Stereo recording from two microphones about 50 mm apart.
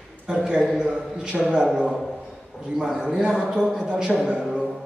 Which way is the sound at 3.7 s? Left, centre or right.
Centre.